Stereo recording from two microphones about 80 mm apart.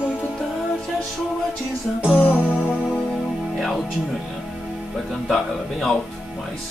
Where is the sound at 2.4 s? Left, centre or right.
Centre.